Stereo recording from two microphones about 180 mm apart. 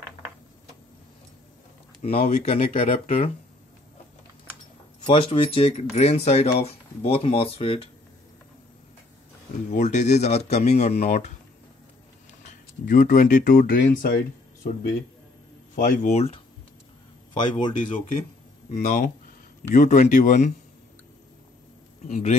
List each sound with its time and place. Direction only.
2.0 s speech: 35° left (ahead or behind)
5.0 s speech: 30° left (ahead or behind)
9.7 s speech: 40° left (ahead or behind)
12.8 s speech: 50° left (ahead or behind)
17.4 s speech: 25° left (ahead or behind)
18.7 s speech: 40° left (ahead or behind)
22.0 s speech: 40° left (ahead or behind)